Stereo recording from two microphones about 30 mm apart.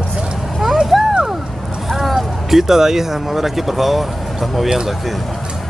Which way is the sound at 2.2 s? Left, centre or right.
Centre.